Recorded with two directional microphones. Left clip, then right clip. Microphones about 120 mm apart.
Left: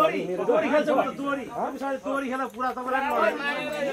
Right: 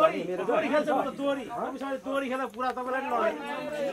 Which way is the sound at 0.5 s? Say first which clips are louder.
Left 3 dB; 20° right (ahead or behind).